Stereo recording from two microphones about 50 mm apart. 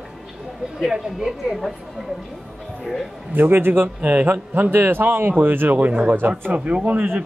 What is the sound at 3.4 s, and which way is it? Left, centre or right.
Speech, right.